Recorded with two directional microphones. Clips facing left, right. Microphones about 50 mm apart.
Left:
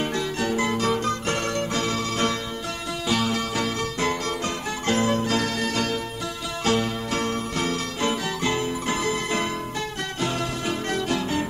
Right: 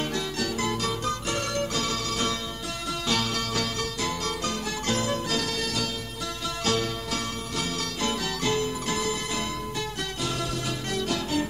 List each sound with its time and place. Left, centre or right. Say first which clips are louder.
0.4 s music: left 5 dB; left
3.1 s music: left 4 dB; centre
4.0 s music: left 5 dB; left